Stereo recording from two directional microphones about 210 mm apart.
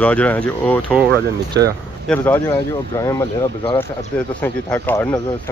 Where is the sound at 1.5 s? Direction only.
60° right (ahead or behind).